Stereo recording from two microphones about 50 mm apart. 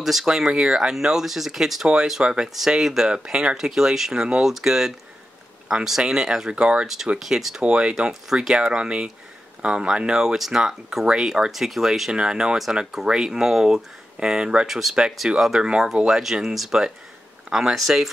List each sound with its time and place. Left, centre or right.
0.0 s speech: centre
3.3 s speech: centre
7.2 s speech: centre
7.6 s speech: right
8.1 s speech: centre
14.7 s speech: centre